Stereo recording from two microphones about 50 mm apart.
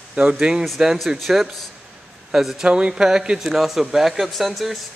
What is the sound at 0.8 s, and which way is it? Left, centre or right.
A man's voice, centre.